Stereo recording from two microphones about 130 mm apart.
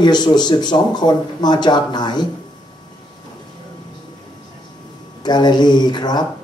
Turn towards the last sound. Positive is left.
turn(degrees=35)  # may be behind; listen again after turning